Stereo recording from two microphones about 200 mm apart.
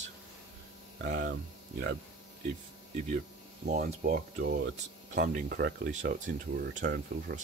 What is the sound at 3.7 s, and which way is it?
Speech, 45° right (ahead or behind).